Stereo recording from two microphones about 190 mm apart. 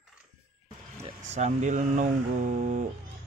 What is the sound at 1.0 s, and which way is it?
Speech, 35° right (ahead or behind).